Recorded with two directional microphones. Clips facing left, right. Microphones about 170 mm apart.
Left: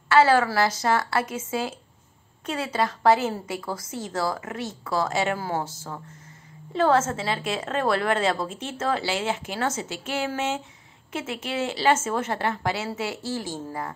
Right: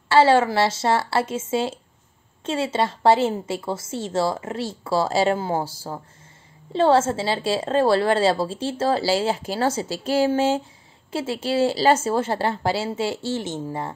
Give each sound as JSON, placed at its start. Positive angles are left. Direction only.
{"t": 0.1, "sound": "a woman's voice", "side_deg": -30}